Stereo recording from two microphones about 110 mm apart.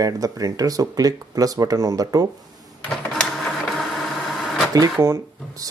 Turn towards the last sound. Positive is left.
turn(degrees=-30)  # may be behind; listen again after turning